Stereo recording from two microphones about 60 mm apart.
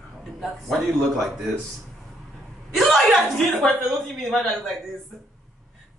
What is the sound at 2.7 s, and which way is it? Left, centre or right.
Speech, centre.